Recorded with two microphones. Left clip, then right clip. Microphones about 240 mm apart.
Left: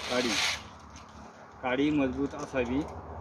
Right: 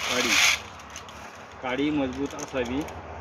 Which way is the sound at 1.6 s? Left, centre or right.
Left.